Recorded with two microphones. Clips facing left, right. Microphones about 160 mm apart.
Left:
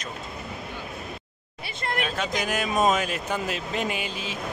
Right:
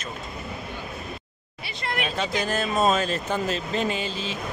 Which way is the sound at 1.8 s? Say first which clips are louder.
Left 1 dB; 45° left (ahead or behind).